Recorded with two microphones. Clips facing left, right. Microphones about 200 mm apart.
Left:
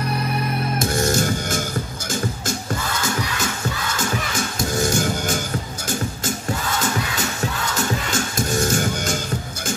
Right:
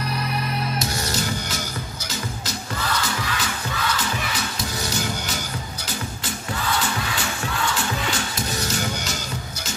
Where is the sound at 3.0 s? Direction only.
45° left (ahead or behind).